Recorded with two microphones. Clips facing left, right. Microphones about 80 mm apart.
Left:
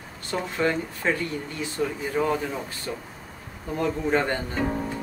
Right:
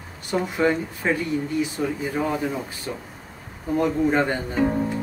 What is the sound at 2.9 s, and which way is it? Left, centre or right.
Speech, centre.